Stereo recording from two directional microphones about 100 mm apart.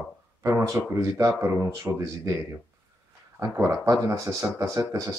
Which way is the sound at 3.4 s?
25° right (ahead or behind).